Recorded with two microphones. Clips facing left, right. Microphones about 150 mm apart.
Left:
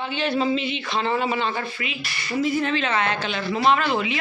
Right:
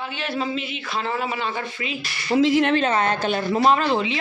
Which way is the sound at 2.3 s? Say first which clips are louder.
Right 5 dB; 90° right.